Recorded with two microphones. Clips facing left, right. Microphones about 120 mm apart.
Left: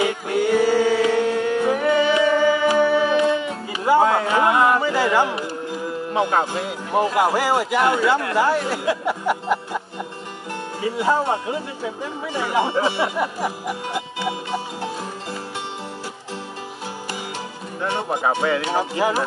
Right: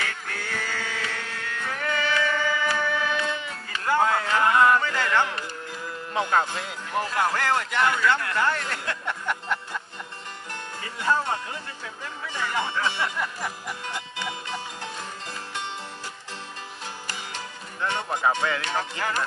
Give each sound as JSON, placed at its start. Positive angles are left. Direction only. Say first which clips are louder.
{"t": 0.0, "sound": "music", "louder": "left 14 dB", "side_deg": 15}
{"t": 9.3, "sound": "speech", "louder": "left 6 dB", "side_deg": 10}
{"t": 10.8, "sound": "speech", "louder": "left 6 dB", "side_deg": 10}
{"t": 18.1, "sound": "speech", "louder": "left 4 dB", "side_deg": 20}